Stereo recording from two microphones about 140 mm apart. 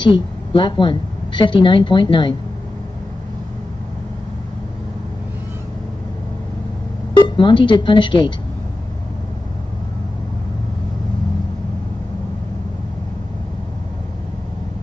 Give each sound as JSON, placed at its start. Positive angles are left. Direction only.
{"t": 0.0, "sound": "a woman's voice", "side_deg": 35}
{"t": 7.2, "sound": "speech", "side_deg": 35}